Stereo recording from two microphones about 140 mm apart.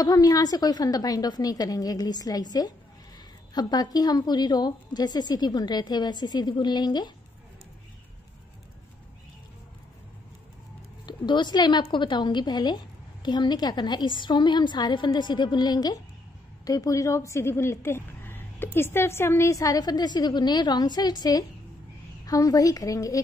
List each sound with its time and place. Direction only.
0.0 s a woman's voice: 25° left (ahead or behind)
11.1 s a woman's voice: 35° left (ahead or behind)